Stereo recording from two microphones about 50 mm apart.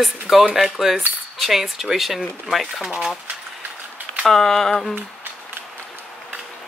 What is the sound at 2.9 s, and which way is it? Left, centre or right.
Speech, centre.